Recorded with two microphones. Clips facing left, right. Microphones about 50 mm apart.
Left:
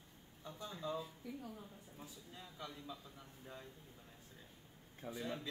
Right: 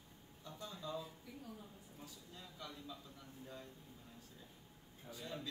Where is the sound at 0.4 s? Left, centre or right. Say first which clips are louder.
Left 3 dB; centre.